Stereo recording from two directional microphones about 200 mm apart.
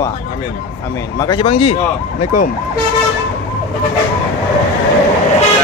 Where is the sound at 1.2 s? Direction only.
25° left (ahead or behind).